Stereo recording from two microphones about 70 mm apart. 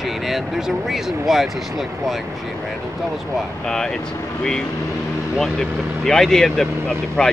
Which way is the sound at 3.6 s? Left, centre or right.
Centre.